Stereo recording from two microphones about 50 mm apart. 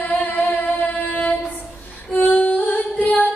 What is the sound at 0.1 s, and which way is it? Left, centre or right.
Singing, left.